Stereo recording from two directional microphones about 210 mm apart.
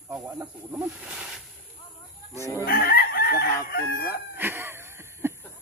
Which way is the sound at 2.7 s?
45° left (ahead or behind).